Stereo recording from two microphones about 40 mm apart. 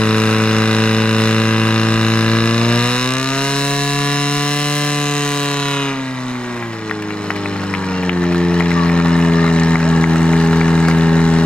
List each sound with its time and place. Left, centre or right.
0.0 s vehicle: left
8.1 s music: left